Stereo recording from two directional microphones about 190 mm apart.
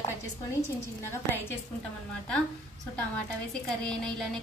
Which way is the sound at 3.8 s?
5° left (ahead or behind).